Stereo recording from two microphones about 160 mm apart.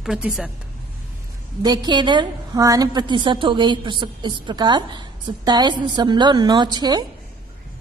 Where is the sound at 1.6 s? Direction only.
25° right (ahead or behind).